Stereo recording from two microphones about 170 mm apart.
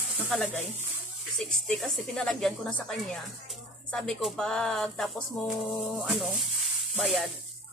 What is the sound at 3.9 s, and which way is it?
Speech, 5° left (ahead or behind).